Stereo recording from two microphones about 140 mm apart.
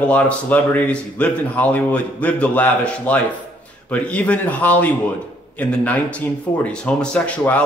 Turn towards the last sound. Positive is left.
turn(degrees=10)  # may be behind; listen again after turning